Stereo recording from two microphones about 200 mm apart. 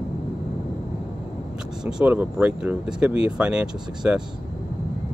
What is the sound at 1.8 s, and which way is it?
Speech, 5° right (ahead or behind).